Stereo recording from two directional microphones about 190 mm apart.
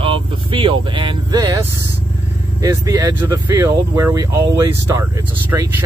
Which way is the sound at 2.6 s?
20° right (ahead or behind).